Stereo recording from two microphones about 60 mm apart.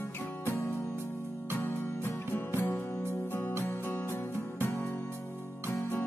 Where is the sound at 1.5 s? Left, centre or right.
Left.